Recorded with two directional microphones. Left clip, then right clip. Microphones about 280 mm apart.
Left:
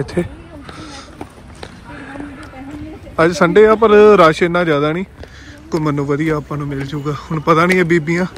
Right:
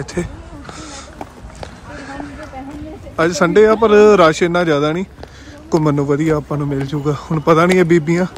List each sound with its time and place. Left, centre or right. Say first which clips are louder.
0.0 s speech: left 3 dB; centre
0.7 s a sound: right 1 dB; centre
3.2 s speech: left 2 dB; centre